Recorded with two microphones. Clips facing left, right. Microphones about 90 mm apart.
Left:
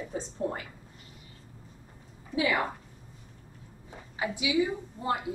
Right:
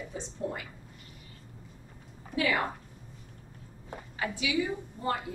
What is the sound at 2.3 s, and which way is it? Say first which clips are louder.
Speech: left 1 dB; 15° left (ahead or behind).